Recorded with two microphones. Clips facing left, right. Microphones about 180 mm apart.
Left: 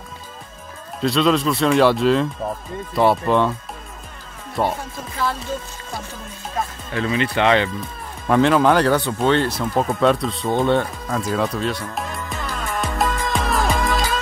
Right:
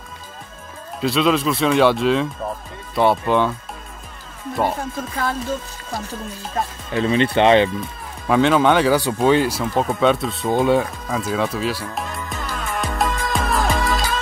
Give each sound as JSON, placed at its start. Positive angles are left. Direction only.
{"t": 1.0, "sound": "speech", "side_deg": 0}
{"t": 4.6, "sound": "speech", "side_deg": -5}
{"t": 6.9, "sound": "speech", "side_deg": -25}
{"t": 8.3, "sound": "speech", "side_deg": 0}